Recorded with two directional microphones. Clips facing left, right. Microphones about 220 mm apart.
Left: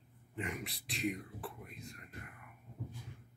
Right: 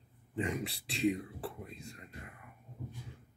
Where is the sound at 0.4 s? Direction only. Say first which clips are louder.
Right 6 dB; 30° right (ahead or behind).